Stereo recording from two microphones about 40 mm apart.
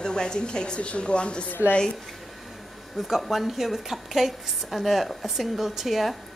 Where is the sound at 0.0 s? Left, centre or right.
Centre.